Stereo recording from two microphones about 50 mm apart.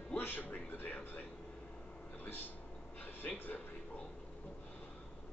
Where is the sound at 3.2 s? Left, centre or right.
Left.